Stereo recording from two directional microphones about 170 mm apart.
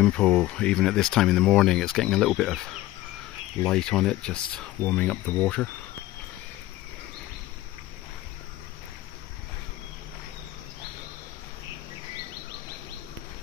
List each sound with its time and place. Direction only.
0.0 s speech: 5° left (ahead or behind)